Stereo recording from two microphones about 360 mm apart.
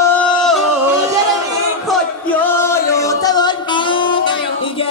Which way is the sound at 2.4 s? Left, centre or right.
Centre.